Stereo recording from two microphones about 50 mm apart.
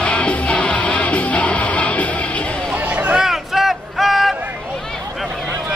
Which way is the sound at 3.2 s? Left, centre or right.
Centre.